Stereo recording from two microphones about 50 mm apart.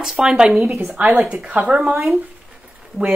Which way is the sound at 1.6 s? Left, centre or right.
Right.